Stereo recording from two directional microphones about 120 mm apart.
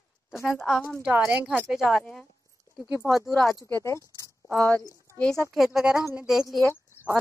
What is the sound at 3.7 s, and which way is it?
Speech, 25° left (ahead or behind).